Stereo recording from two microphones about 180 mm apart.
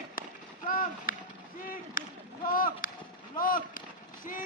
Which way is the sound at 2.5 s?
50° left (ahead or behind).